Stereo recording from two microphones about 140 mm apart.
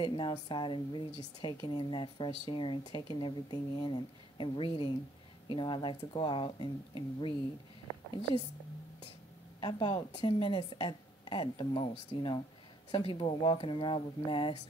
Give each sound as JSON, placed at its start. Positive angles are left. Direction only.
{"t": 0.0, "sound": "speech", "side_deg": 35}
{"t": 9.6, "sound": "speech", "side_deg": 40}